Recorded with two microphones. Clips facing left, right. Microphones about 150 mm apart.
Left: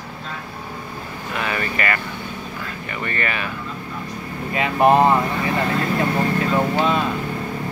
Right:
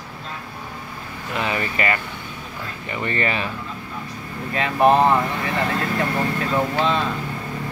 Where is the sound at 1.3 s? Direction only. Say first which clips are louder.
Right 1 dB; 20° right (ahead or behind).